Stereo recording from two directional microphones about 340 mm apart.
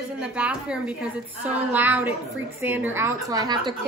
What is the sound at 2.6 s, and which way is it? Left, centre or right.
A woman's voice, centre.